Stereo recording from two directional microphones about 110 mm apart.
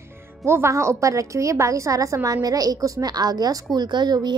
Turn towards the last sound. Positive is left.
turn(degrees=-40)  # may be behind; listen again after turning